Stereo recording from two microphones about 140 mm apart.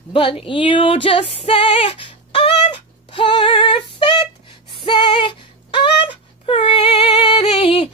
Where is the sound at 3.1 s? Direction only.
35° left (ahead or behind).